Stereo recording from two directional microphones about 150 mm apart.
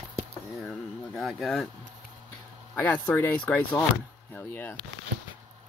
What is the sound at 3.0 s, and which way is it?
Speech, 10° left (ahead or behind).